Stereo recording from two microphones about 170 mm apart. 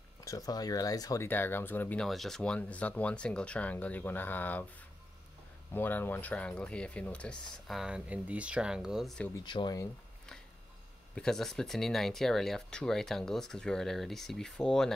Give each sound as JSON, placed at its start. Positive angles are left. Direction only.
{"t": 0.2, "sound": "speech", "side_deg": 20}
{"t": 5.7, "sound": "speech", "side_deg": 10}
{"t": 9.3, "sound": "speech", "side_deg": 25}
{"t": 11.1, "sound": "speech", "side_deg": 5}